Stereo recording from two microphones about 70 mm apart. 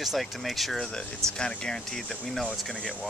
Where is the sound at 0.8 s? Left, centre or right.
Centre.